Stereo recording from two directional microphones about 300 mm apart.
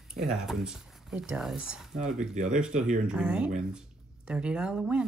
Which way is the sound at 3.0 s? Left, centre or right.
Centre.